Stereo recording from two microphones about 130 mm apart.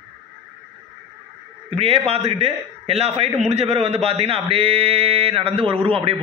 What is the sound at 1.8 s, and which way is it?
A man's voice, 50° right (ahead or behind).